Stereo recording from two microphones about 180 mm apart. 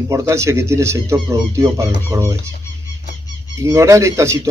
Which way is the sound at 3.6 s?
15° right (ahead or behind).